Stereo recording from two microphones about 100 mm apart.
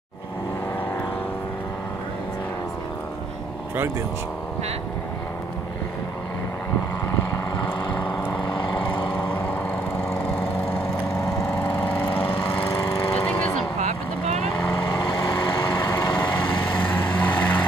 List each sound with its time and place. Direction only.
7.5 s vehicle: 55° left (ahead or behind)
11.5 s lawn mower: 15° left (ahead or behind)
13.1 s vehicle: 15° left (ahead or behind)
15.0 s lawn mower: 55° left (ahead or behind)
15.8 s lawn mower: 30° left (ahead or behind)
16.2 s vehicle: 20° left (ahead or behind)